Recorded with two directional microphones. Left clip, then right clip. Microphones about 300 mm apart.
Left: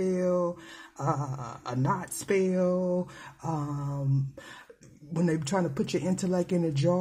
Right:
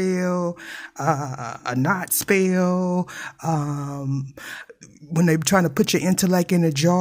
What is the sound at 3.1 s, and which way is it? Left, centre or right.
Speech, right.